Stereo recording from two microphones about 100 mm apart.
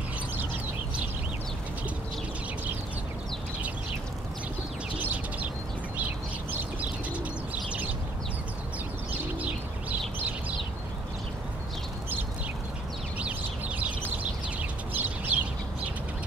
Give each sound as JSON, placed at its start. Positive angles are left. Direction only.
{"t": 5.0, "sound": "bird", "side_deg": -15}
{"t": 9.4, "sound": "bird", "side_deg": -15}
{"t": 13.2, "sound": "bird", "side_deg": -15}